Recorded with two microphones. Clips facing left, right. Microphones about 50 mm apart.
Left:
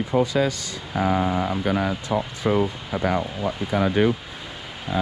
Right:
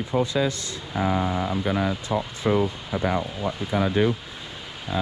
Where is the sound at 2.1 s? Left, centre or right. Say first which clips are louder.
Left 2 dB; left.